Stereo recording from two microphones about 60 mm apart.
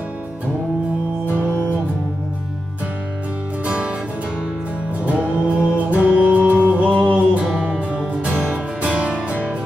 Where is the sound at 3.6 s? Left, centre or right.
Centre.